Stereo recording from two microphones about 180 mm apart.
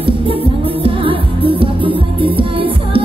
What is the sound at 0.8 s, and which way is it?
Music, 30° right (ahead or behind).